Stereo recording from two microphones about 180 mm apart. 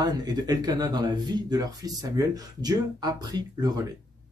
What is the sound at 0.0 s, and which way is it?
Speech, 20° right (ahead or behind).